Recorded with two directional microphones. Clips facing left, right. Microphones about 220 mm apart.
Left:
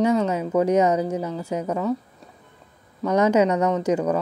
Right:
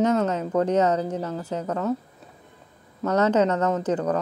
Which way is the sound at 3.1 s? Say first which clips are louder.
Left 2 dB; 10° left (ahead or behind).